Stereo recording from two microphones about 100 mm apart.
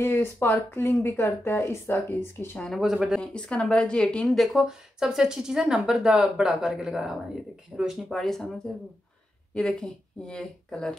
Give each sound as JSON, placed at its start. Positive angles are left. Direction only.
{"t": 0.0, "sound": "speech", "side_deg": 20}
{"t": 2.6, "sound": "speech", "side_deg": 0}
{"t": 9.5, "sound": "speech", "side_deg": 10}